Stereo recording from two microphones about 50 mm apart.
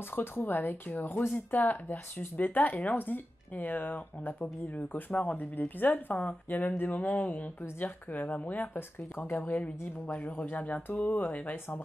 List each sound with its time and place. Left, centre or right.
0.1 s speech: left
9.4 s a woman's voice: left